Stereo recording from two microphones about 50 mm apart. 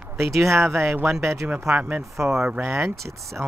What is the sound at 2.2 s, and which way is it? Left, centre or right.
Speech, right.